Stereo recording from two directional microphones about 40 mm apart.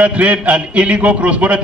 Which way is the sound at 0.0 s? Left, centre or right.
Right.